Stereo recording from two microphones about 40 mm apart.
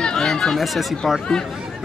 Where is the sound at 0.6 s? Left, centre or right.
Centre.